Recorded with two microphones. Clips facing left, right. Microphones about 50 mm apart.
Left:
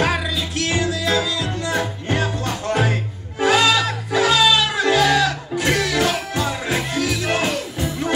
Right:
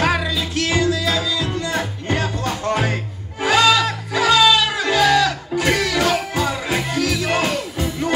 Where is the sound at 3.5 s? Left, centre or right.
Centre.